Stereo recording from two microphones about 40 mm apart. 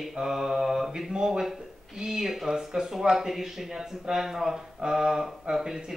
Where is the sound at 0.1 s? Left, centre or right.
Centre.